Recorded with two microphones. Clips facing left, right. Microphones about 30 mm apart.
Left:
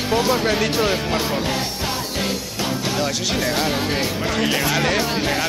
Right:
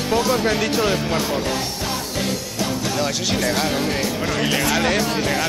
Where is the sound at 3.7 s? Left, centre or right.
Centre.